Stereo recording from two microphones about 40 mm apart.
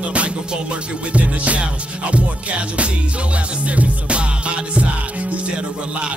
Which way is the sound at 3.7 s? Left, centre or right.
Right.